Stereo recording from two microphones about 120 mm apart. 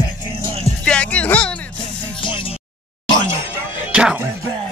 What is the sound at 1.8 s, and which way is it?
Music, 45° left (ahead or behind).